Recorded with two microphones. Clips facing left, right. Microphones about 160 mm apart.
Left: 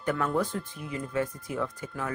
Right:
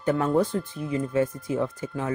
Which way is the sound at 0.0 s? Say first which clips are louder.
Right 5 dB; 30° right (ahead or behind).